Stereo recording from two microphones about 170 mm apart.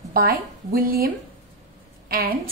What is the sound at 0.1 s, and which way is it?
A woman's voice, 60° right (ahead or behind).